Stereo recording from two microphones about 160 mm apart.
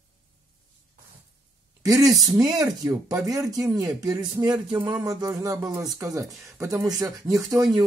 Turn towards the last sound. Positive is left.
turn(degrees=-20)  # may be behind; listen again after turning